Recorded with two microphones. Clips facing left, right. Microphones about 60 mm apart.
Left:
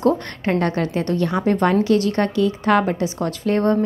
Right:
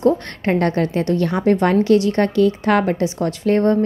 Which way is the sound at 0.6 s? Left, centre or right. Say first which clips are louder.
Right 3 dB; right.